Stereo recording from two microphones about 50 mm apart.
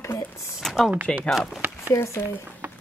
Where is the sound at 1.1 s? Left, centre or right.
Centre.